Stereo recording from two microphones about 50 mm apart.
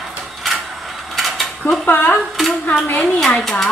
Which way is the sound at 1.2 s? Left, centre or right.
Centre.